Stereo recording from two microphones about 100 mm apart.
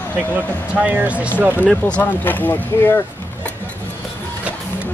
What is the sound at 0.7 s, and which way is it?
Speech, 15° right (ahead or behind).